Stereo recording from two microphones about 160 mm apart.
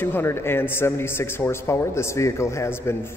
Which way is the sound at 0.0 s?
15° left (ahead or behind).